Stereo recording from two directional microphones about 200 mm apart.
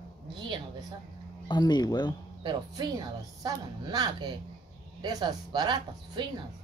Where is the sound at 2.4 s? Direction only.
20° right (ahead or behind).